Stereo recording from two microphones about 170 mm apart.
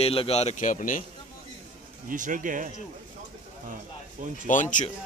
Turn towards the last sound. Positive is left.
turn(degrees=50)  # may be behind; listen again after turning